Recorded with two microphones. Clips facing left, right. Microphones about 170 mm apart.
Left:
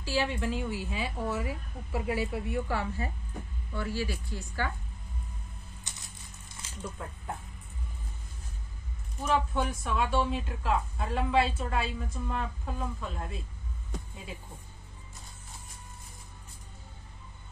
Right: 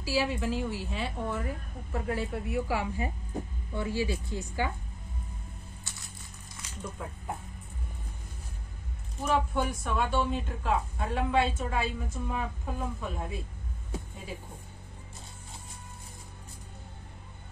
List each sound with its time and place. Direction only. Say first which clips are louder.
0.0 s speech: right 1 dB; 5° right (ahead or behind)
2.7 s speech: right 2 dB; 15° right (ahead or behind)
5.9 s a sound: even; 20° left (ahead or behind)
6.8 s speech: right 1 dB; 10° right (ahead or behind)
9.2 s speech: right 1 dB; 5° right (ahead or behind)